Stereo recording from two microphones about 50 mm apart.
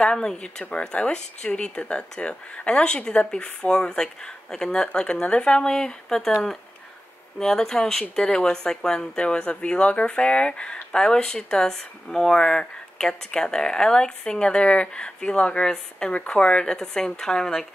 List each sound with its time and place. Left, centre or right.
0.0 s speech: centre
0.7 s speech: left
7.3 s speech: centre